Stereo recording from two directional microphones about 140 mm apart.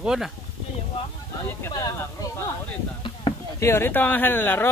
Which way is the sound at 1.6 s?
25° left (ahead or behind).